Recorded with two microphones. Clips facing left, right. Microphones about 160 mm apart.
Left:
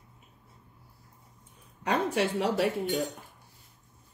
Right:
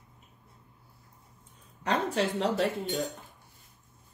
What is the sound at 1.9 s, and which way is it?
Speech, 10° left (ahead or behind).